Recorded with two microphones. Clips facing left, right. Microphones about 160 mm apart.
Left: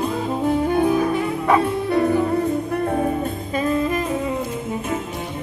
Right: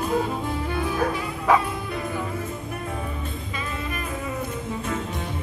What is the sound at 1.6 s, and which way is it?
Music, 65° left (ahead or behind).